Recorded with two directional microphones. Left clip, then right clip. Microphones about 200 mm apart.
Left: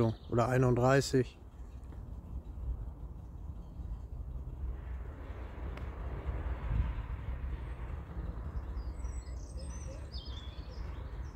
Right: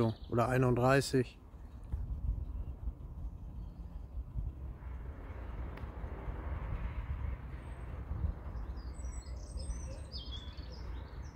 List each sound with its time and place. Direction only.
0.0 s speech: centre (ahead or behind)